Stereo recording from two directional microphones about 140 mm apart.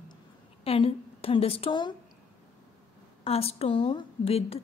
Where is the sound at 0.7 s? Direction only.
45° left (ahead or behind).